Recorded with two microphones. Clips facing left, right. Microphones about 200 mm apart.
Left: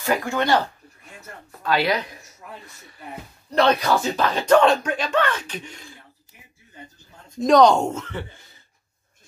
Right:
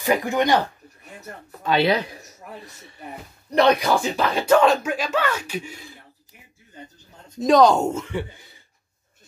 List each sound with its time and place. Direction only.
0.0 s speech: 15° right (ahead or behind)
1.6 s speech: 20° right (ahead or behind)
3.4 s speech: 15° right (ahead or behind)
7.3 s speech: centre (ahead or behind)